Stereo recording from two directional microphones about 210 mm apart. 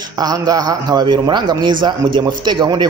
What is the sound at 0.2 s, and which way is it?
Speech, 20° right (ahead or behind).